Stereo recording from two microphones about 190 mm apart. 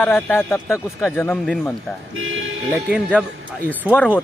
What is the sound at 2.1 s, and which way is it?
Speech, 90° right.